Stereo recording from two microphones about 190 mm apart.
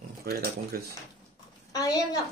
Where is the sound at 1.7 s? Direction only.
20° left (ahead or behind).